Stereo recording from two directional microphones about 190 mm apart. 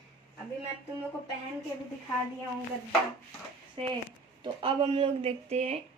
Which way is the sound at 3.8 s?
30° right (ahead or behind).